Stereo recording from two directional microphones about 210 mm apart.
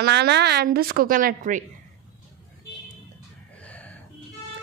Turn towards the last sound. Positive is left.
turn(degrees=5)  # may be behind; listen again after turning